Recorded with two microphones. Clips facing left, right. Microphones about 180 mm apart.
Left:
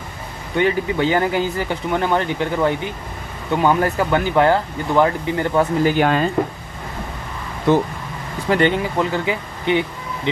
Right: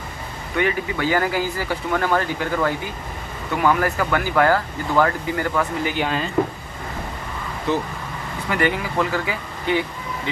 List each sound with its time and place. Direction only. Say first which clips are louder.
0.6 s speech: left 4 dB; 25° left (ahead or behind)
5.9 s speech: left 7 dB; 50° left (ahead or behind)
8.5 s speech: left 5 dB; 25° left (ahead or behind)